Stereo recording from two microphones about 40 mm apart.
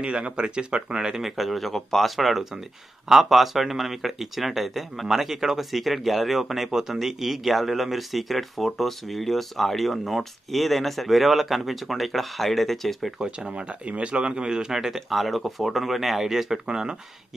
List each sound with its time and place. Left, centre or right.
0.0 s speech: right
1.0 s speech: centre
2.1 s speech: centre
13.2 s speech: right
15.0 s speech: centre
16.6 s speech: centre